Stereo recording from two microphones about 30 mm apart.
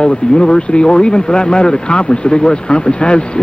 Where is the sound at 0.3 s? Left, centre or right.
Left.